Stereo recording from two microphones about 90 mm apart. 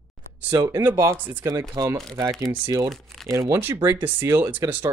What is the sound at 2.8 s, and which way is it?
Speech, 5° left (ahead or behind).